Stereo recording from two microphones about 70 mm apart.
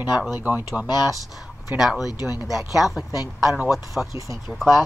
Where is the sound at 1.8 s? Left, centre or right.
Centre.